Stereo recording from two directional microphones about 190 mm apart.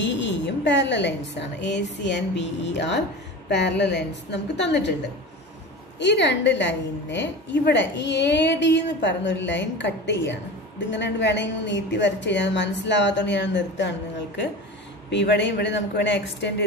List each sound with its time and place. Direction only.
0.0 s a woman's voice: 70° left (ahead or behind)
5.9 s a woman's voice: 65° left (ahead or behind)